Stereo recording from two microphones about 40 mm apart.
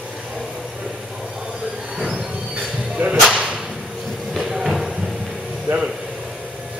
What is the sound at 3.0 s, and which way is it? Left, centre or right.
Whip, right.